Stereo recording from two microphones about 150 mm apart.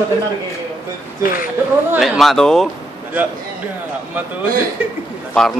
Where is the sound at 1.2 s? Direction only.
70° left (ahead or behind).